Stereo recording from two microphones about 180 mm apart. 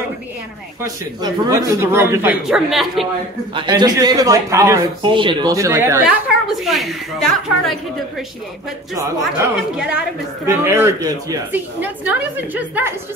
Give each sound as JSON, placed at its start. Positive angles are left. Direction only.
{"t": 1.2, "sound": "a woman's voice", "side_deg": -15}
{"t": 2.4, "sound": "a woman's voice", "side_deg": 0}
{"t": 3.5, "sound": "a woman's voice", "side_deg": -25}
{"t": 6.5, "sound": "a woman's voice", "side_deg": 0}
{"t": 9.8, "sound": "a woman's voice", "side_deg": -5}